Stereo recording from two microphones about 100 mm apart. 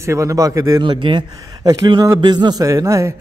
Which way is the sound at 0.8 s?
55° right (ahead or behind).